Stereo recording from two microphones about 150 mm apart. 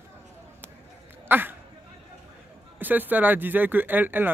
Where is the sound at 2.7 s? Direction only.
10° right (ahead or behind).